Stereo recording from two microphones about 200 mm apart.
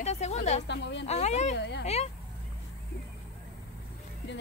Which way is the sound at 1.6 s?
60° left (ahead or behind).